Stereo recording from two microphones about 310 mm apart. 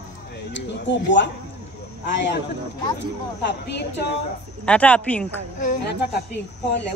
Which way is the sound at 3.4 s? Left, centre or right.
Left.